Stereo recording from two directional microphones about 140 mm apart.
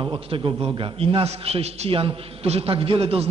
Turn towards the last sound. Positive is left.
turn(degrees=-45)  # may be behind; listen again after turning